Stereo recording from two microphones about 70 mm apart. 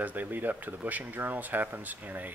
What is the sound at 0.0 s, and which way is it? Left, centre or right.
Speech, right.